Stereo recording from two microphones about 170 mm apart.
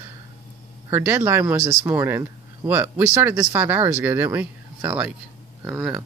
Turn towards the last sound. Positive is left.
turn(degrees=-5)  # may be behind; listen again after turning